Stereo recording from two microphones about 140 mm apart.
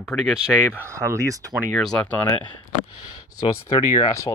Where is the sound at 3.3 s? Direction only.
30° left (ahead or behind).